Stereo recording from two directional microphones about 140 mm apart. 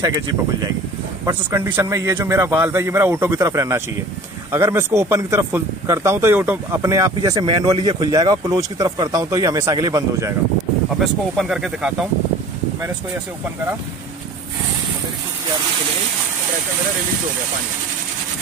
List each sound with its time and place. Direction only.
1.2 s speech: 20° right (ahead or behind)
11.0 s speech: centre (ahead or behind)